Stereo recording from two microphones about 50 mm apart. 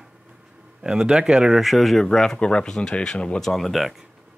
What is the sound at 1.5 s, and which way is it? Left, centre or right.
Speech, centre.